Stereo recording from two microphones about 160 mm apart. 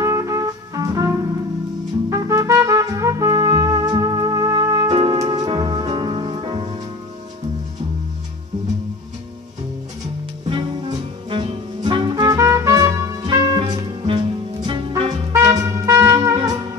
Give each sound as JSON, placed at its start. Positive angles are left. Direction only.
{"t": 0.0, "sound": "music", "side_deg": -20}
{"t": 10.5, "sound": "music", "side_deg": -30}
{"t": 15.6, "sound": "music", "side_deg": -20}
{"t": 16.3, "sound": "music", "side_deg": -30}